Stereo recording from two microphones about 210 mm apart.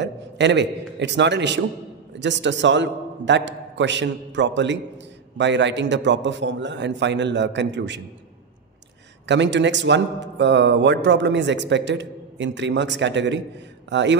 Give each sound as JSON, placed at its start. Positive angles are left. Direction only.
{"t": 0.0, "sound": "a man's voice", "side_deg": -55}
{"t": 9.2, "sound": "a man's voice", "side_deg": -55}